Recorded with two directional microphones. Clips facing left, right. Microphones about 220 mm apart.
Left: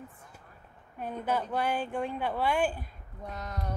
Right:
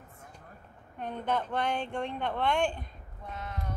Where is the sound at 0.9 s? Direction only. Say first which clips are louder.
Even; 5° left (ahead or behind).